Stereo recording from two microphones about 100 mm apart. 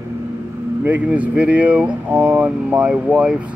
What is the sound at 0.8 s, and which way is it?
Speech, 15° right (ahead or behind).